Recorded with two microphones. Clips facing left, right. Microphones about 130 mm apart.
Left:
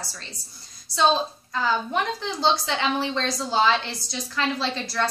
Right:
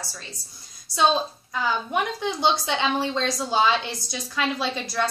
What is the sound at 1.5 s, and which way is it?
A woman's voice, 15° right (ahead or behind).